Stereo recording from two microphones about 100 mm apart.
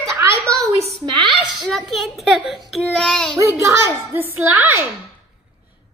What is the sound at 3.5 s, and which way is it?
A woman's voice, 30° right (ahead or behind).